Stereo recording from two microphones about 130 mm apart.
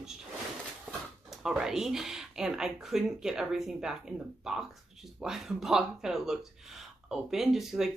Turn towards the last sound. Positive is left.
turn(degrees=-5)  # may be behind; listen again after turning